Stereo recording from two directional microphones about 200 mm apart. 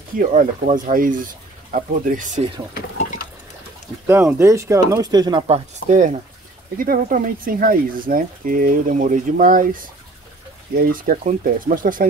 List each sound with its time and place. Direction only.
0.1 s speech: 40° right (ahead or behind)
4.1 s speech: 10° right (ahead or behind)
6.8 s speech: 45° right (ahead or behind)